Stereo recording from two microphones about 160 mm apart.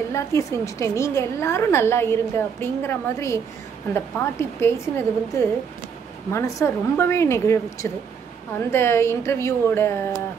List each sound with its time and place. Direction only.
0.1 s a woman's voice: 20° left (ahead or behind)